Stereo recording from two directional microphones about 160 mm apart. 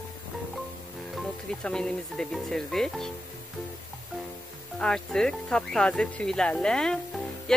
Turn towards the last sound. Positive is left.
turn(degrees=5)  # may be behind; listen again after turning